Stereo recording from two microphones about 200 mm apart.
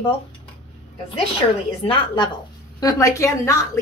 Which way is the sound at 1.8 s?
25° left (ahead or behind).